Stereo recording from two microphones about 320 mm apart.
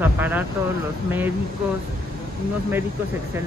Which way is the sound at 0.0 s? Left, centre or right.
Centre.